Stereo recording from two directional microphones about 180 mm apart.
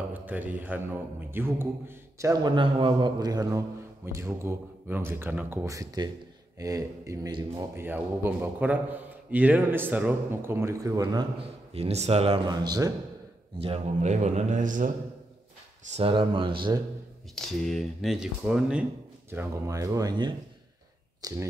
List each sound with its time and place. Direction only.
0.1 s a man's voice: 10° right (ahead or behind); by 7.6 s 25° right (ahead or behind)
7.7 s a man's voice: 10° right (ahead or behind)
11.7 s a man's voice: 35° right (ahead or behind)
12.4 s speech: 20° right (ahead or behind)
13.6 s a man's voice: 35° right (ahead or behind)
15.9 s speech: 30° right (ahead or behind)
17.4 s speech: centre (ahead or behind)
19.3 s speech: 15° right (ahead or behind)